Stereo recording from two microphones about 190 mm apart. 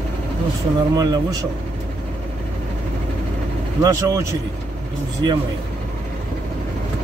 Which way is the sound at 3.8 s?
15° right (ahead or behind).